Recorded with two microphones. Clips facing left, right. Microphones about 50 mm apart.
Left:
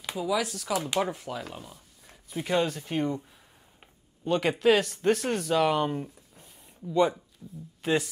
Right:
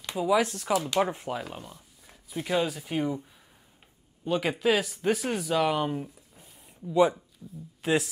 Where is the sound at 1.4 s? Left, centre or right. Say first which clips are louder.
Right 1 dB; centre.